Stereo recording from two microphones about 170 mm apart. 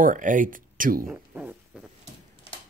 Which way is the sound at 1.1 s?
5° right (ahead or behind).